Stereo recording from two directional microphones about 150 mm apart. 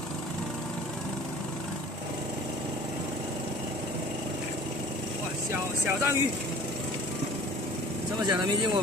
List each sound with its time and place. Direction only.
5.5 s speech: 15° right (ahead or behind)
8.2 s speech: 25° right (ahead or behind)